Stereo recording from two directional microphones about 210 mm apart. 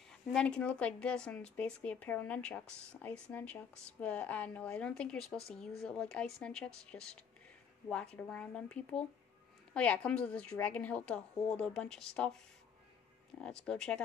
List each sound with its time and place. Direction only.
0.1 s a woman's voice: 5° left (ahead or behind)
13.4 s a woman's voice: 5° left (ahead or behind)